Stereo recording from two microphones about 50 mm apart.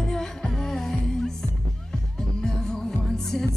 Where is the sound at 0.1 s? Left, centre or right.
Centre.